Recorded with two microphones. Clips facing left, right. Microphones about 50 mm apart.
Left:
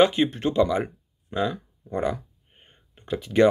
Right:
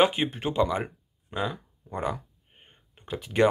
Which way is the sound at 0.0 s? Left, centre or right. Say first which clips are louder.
Left 4 dB; centre.